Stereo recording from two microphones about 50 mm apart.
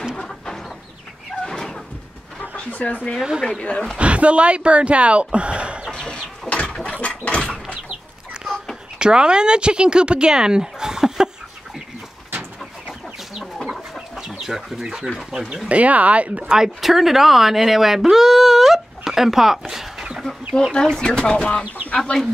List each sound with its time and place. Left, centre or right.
0.1 s chicken: centre
1.4 s a sound: centre
2.5 s speech: left
3.2 s speech: centre
3.6 s speech: centre
4.0 s speech: right
5.9 s a sound: centre
8.9 s speech: centre
13.7 s chicken: centre
14.4 s speech: centre
15.7 s speech: right
16.5 s speech: centre
19.7 s a sound: centre
20.7 s speech: centre